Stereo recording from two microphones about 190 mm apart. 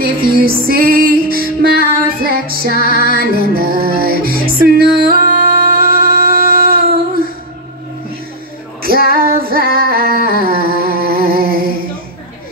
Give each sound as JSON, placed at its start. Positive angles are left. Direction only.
{"t": 0.0, "sound": "music", "side_deg": -50}
{"t": 8.8, "sound": "female singing", "side_deg": -50}